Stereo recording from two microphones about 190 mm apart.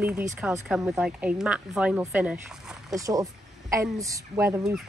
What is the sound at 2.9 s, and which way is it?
Speech, 20° right (ahead or behind).